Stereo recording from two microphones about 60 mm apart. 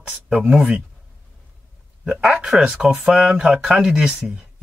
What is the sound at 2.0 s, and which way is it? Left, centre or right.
Speech, centre.